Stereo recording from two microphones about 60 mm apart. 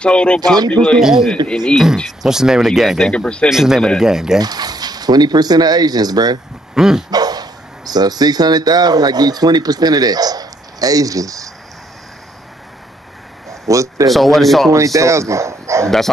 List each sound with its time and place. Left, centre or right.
0.0 s speech: centre
0.9 s speech: centre
1.3 s speech: centre
2.2 s speech: centre
3.1 s speech: centre
3.4 s speech: centre
4.4 s speech: right
6.7 s dog: centre
7.1 s speech: right
13.5 s speech: right
14.1 s speech: centre
14.7 s speech: right